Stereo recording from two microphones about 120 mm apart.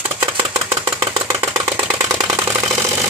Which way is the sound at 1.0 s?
40° right (ahead or behind).